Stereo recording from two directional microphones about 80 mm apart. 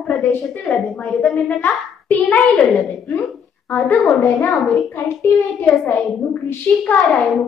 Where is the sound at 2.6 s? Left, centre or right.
Centre.